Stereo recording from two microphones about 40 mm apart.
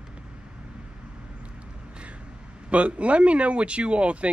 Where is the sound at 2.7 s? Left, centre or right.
Right.